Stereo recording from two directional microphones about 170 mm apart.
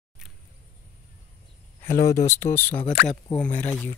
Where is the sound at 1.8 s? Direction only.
15° left (ahead or behind).